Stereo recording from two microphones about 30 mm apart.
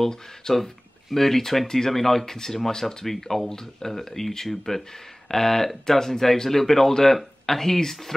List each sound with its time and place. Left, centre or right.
0.5 s speech: left
1.1 s speech: centre